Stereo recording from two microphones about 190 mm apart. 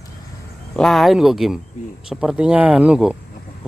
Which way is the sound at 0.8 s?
Centre (ahead or behind).